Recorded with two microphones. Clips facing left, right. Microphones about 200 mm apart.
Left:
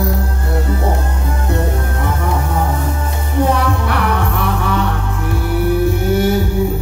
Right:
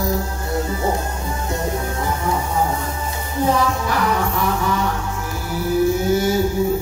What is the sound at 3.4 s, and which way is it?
Music, 60° left (ahead or behind).